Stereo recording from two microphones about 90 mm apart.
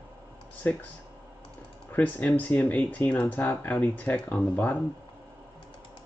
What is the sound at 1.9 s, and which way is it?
Speech, 20° left (ahead or behind).